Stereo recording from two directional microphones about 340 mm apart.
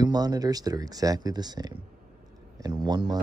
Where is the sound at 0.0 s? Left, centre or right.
Centre.